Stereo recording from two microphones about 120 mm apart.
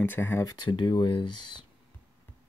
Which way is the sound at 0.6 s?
40° left (ahead or behind).